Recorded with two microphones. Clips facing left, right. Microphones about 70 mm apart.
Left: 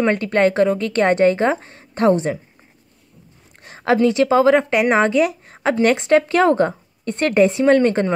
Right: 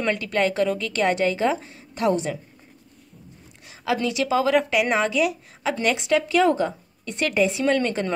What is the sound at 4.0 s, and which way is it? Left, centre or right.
A woman's voice, left.